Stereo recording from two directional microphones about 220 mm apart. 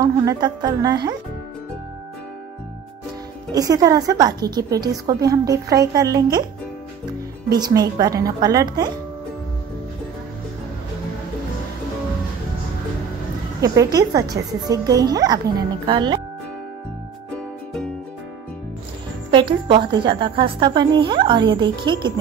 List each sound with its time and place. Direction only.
0.0 s a woman's voice: 15° right (ahead or behind)
3.5 s a woman's voice: 15° right (ahead or behind)
7.4 s a woman's voice: 15° right (ahead or behind)
13.6 s a woman's voice: 15° right (ahead or behind)
19.3 s a woman's voice: 20° right (ahead or behind)